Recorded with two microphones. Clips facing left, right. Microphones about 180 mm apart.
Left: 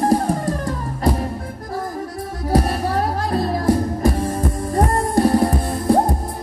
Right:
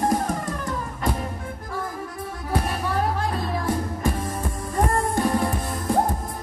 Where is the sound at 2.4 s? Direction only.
35° left (ahead or behind).